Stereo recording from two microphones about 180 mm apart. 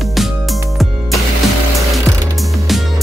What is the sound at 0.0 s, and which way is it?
Music, centre (ahead or behind).